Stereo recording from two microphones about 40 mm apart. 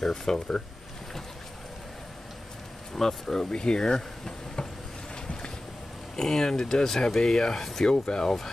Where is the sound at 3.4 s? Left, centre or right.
Left.